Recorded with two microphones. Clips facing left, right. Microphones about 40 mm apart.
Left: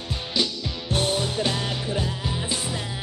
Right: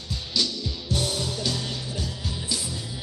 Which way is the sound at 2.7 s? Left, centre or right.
Left.